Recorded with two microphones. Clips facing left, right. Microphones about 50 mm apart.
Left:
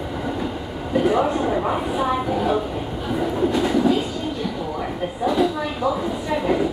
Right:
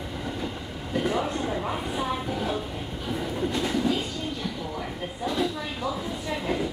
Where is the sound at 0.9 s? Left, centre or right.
Centre.